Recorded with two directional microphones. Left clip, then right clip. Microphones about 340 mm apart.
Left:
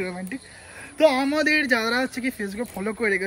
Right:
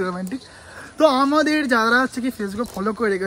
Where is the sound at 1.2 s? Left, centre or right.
Centre.